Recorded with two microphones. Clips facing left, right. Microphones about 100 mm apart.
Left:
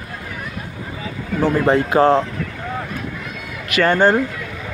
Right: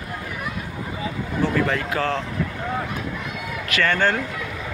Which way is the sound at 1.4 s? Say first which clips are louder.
Left 6 dB; 30° left (ahead or behind).